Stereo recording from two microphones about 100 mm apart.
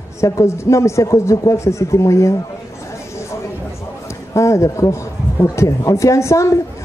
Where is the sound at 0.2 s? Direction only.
30° left (ahead or behind).